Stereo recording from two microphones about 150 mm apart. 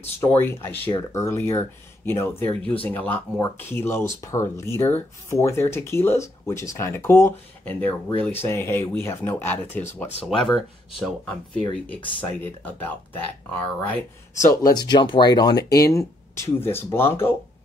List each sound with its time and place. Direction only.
0.4 s speech: 15° left (ahead or behind)
10.2 s speech: centre (ahead or behind)